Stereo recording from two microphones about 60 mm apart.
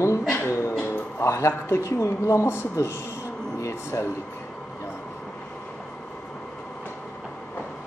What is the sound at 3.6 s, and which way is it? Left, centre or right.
Speech, left.